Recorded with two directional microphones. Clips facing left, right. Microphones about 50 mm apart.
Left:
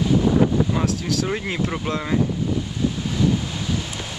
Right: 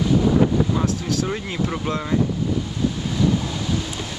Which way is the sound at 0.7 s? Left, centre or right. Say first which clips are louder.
Even; centre.